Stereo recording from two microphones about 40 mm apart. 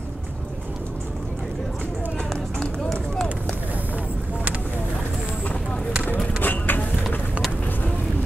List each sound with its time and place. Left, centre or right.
2.6 s run: centre
6.4 s vehicle: left